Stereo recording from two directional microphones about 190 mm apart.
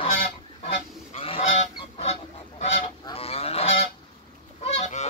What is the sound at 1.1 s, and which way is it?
Goose, 30° left (ahead or behind).